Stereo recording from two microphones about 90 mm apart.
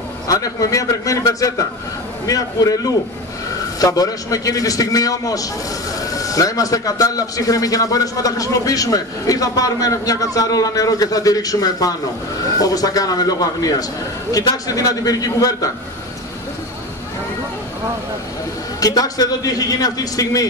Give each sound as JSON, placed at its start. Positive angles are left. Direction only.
{"t": 0.3, "sound": "a man's voice", "side_deg": 40}
{"t": 18.8, "sound": "a man's voice", "side_deg": 45}